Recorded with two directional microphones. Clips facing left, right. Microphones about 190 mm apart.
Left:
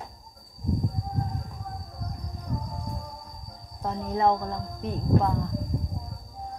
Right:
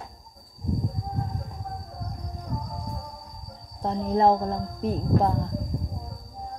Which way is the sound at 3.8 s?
30° right (ahead or behind).